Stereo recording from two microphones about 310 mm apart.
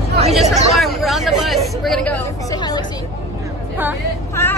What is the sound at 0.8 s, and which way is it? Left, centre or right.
Vehicle, centre.